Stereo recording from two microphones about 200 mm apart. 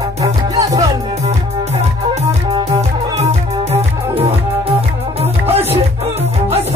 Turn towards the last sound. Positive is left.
turn(degrees=-30)  # may be behind; listen again after turning